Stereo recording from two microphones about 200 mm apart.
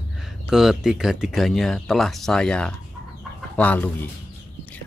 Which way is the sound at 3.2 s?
5° left (ahead or behind).